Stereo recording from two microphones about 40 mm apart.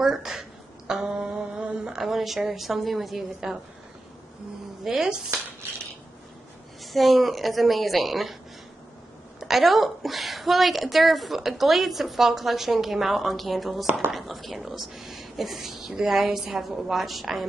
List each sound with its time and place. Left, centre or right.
0.0 s mantra: centre
2.0 s a woman's voice: centre
4.8 s speech: centre
6.8 s a woman's voice: centre
9.4 s a woman's voice: centre
17.0 s a woman's voice: centre